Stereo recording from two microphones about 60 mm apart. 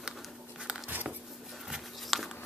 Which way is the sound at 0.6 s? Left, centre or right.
Centre.